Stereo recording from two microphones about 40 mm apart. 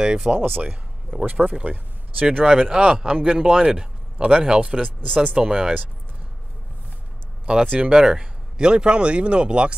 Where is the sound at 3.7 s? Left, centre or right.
Centre.